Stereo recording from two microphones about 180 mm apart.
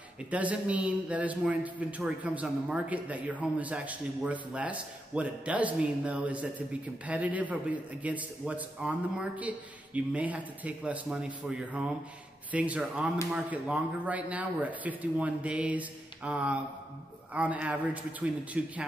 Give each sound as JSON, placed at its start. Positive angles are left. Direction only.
{"t": 0.3, "sound": "speech", "side_deg": -10}